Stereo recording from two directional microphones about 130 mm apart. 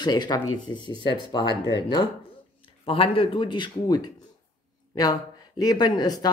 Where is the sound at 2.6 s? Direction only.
45° left (ahead or behind).